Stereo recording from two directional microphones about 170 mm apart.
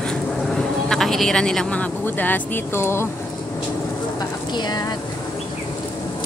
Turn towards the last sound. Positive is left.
turn(degrees=25)  # may be behind; listen again after turning